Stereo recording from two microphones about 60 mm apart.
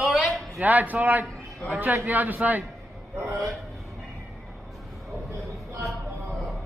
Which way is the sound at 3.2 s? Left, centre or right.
Right.